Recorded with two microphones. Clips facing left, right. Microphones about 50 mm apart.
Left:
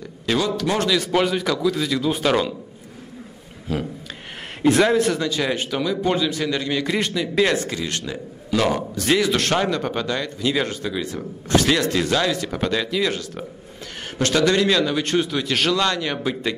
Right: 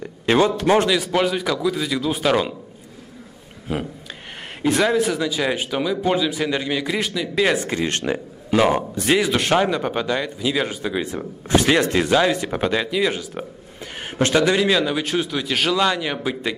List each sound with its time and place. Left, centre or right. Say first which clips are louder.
0.6 s speech: right 5 dB; right
1.0 s speech: even; centre
3.7 s speech: even; right
4.6 s speech: left 2 dB; centre
7.5 s speech: right 2 dB; right
8.0 s a sound: right 6 dB; right
8.5 s speech: right 3 dB; right
10.9 s speech: right 2 dB; right